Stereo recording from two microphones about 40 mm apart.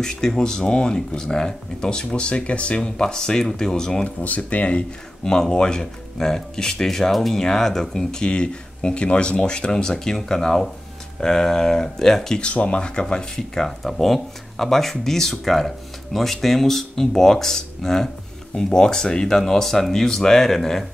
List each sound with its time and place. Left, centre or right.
0.0 s speech: centre; by 2.8 s left
2.8 s speech: centre
4.2 s speech: left
5.2 s speech: centre
12.4 s speech: left
13.7 s speech: centre